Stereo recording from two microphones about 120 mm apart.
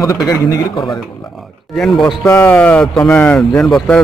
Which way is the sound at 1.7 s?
Centre (ahead or behind).